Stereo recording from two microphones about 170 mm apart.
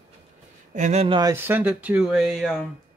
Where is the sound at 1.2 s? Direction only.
15° right (ahead or behind); by 2.6 s centre (ahead or behind).